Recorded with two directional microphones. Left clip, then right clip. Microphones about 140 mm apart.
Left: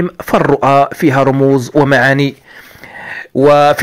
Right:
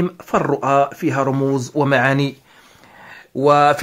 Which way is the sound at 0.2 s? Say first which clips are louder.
Left 9 dB; 35° left (ahead or behind).